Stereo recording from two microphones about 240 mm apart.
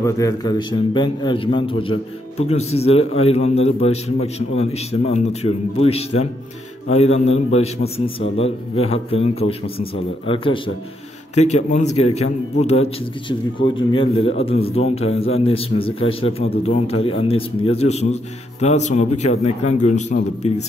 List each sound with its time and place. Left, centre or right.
0.0 s a man's voice: centre